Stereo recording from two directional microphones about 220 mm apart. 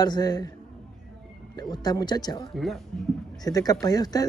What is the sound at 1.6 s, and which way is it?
Speech, 20° left (ahead or behind).